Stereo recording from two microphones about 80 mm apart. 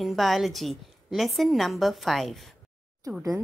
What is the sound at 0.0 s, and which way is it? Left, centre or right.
A woman's voice, centre.